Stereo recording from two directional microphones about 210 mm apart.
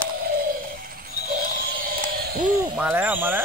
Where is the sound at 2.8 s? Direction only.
5° right (ahead or behind).